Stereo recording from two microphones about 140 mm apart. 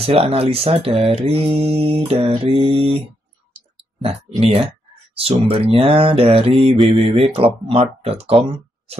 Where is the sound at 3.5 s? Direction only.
45° right (ahead or behind).